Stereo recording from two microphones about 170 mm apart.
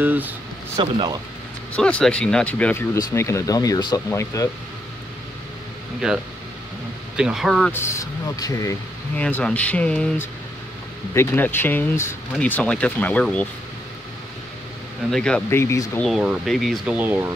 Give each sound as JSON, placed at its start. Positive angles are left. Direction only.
{"t": 0.0, "sound": "speech", "side_deg": -10}
{"t": 0.7, "sound": "speech", "side_deg": -25}
{"t": 1.8, "sound": "speech", "side_deg": 5}
{"t": 7.2, "sound": "speech", "side_deg": -5}
{"t": 7.7, "sound": "speech", "side_deg": 15}
{"t": 9.1, "sound": "speech", "side_deg": 10}
{"t": 15.0, "sound": "speech", "side_deg": 5}
{"t": 15.6, "sound": "speech", "side_deg": 15}
{"t": 16.0, "sound": "speech", "side_deg": -5}